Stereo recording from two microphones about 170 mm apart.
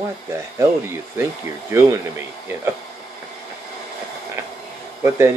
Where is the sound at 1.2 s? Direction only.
15° right (ahead or behind).